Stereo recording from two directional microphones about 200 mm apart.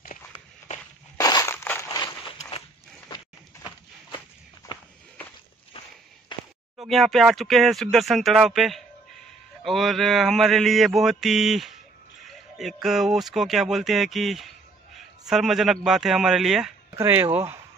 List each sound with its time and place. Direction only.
1.1 s crushing: 20° left (ahead or behind)
6.3 s a sound: 25° left (ahead or behind)
6.9 s mantra: centre (ahead or behind)
12.3 s a sound: centre (ahead or behind)
12.8 s mantra: centre (ahead or behind)
16.9 s speech: 10° right (ahead or behind)